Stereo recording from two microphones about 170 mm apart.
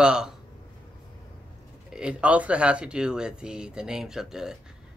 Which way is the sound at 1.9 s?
5° right (ahead or behind).